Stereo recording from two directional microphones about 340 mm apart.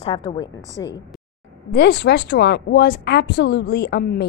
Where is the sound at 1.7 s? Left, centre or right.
Left.